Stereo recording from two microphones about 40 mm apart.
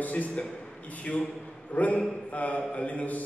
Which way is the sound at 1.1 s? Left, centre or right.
Left.